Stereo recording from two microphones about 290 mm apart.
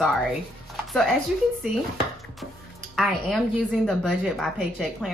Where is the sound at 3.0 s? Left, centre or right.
Centre.